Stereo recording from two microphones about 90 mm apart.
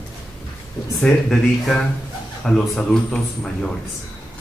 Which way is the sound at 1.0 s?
5° left (ahead or behind).